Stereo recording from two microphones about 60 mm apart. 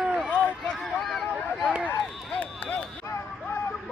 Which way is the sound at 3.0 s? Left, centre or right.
Left.